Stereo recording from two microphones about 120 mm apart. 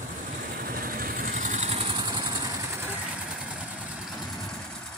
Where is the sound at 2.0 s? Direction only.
35° right (ahead or behind).